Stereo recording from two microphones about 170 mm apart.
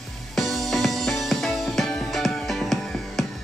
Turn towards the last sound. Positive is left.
turn(degrees=0)  # may be behind; listen again after turning